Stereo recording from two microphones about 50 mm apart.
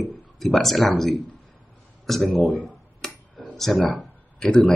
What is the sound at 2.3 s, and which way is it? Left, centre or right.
Speech, left.